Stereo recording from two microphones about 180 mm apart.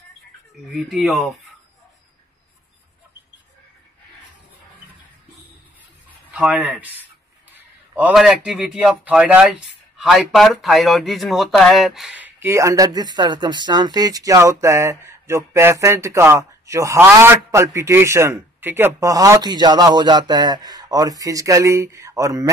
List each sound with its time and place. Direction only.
0.7 s speech: centre (ahead or behind)
6.3 s a man's voice: 5° right (ahead or behind)